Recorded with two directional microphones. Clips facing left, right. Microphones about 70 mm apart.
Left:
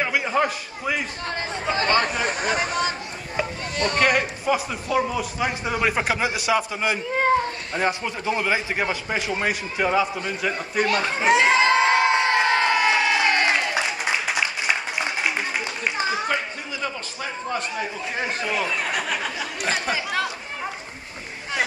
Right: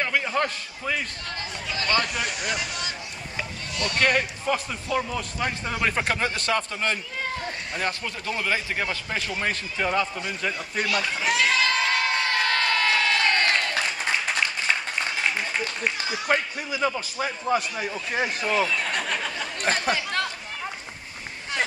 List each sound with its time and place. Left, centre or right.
0.0 s a man's voice: centre
1.2 s speech: left
4.0 s a man's voice: centre
7.1 s speech: left
7.7 s a man's voice: centre
10.9 s crowd: left; by 15.7 s centre
16.0 s a sound: left
16.7 s a man's voice: centre
17.7 s speech: centre
18.4 s chatter: centre